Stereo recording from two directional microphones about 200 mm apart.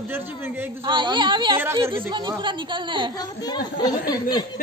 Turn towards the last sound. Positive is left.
turn(degrees=20)  # may be behind; listen again after turning